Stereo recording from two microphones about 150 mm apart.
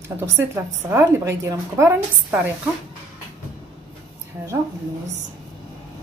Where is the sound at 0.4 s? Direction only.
15° right (ahead or behind).